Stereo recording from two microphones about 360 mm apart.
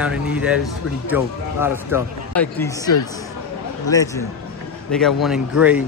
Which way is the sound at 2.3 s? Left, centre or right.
Centre.